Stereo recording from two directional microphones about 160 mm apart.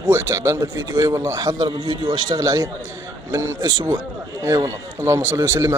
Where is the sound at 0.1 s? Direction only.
15° right (ahead or behind).